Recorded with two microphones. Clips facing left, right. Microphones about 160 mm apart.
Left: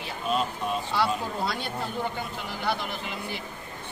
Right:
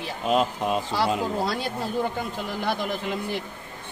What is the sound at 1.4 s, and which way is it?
Speech, 40° right (ahead or behind).